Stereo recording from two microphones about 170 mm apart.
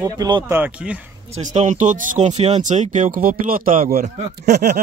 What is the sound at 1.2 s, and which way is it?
Speech, 40° right (ahead or behind).